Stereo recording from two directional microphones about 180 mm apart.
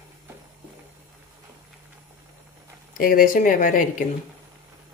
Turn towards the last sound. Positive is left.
turn(degrees=50)  # may be behind; listen again after turning